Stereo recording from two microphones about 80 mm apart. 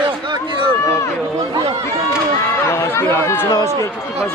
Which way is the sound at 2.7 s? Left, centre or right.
Left.